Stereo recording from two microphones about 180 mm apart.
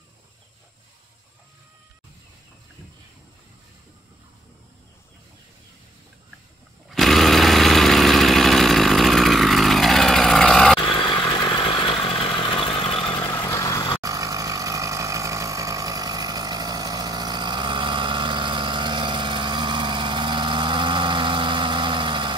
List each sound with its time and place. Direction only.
6.9 s a sound: centre (ahead or behind)
10.8 s vehicle: 30° left (ahead or behind)
13.3 s vehicle: 15° left (ahead or behind)
14.0 s vehicle: 20° right (ahead or behind)